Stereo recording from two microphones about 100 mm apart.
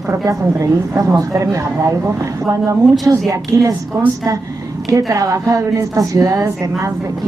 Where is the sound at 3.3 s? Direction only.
35° right (ahead or behind).